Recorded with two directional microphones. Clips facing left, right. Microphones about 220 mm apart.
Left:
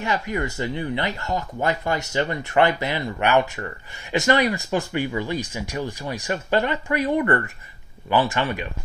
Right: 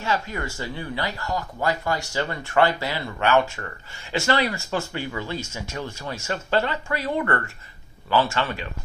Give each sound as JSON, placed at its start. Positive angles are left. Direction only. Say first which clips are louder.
{"t": 0.0, "sound": "speech", "louder": "left 2 dB", "side_deg": 20}